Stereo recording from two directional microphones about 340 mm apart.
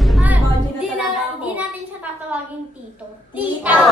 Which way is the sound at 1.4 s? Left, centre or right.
Centre.